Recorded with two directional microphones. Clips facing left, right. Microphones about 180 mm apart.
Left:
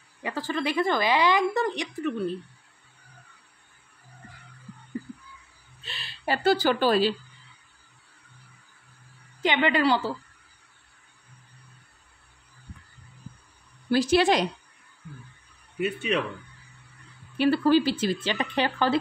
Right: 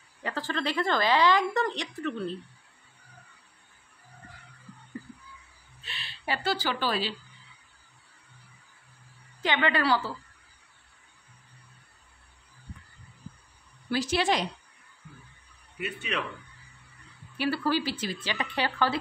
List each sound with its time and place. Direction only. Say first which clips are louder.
0.2 s a woman's voice: left 3 dB; 15° left (ahead or behind)
5.9 s speech: left 5 dB; 40° left (ahead or behind)
9.4 s speech: left 4 dB; 15° left (ahead or behind)
13.8 s speech: left 6 dB; 35° left (ahead or behind)
17.4 s speech: left 7 dB; 20° left (ahead or behind)